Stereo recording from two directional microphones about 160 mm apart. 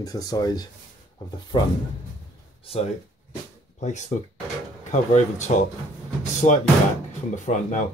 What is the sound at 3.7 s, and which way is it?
Speech, 45° left (ahead or behind).